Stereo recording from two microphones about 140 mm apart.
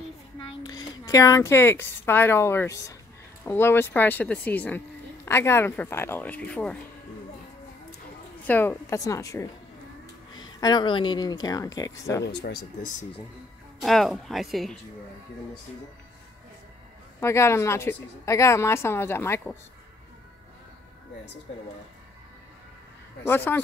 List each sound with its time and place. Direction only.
0.4 s a child's voice: 30° left (ahead or behind); by 6.8 s 10° left (ahead or behind)
8.5 s a woman's voice: 15° left (ahead or behind)
13.7 s speech: centre (ahead or behind)
17.2 s a woman's voice: 20° left (ahead or behind)
23.2 s speech: 15° left (ahead or behind)